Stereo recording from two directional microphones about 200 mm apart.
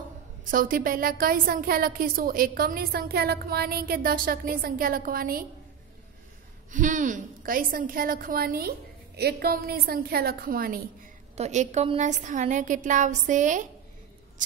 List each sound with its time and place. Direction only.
0.5 s a woman's voice: 45° right (ahead or behind)
6.7 s a woman's voice: 40° right (ahead or behind)
11.3 s a woman's voice: 35° right (ahead or behind)